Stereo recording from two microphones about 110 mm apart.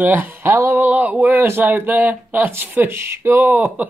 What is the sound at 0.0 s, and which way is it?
Speech, 15° right (ahead or behind).